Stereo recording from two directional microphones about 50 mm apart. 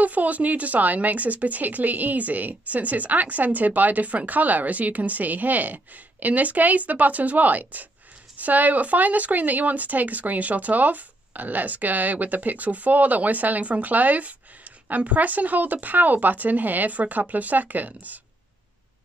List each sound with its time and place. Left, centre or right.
0.0 s speech: right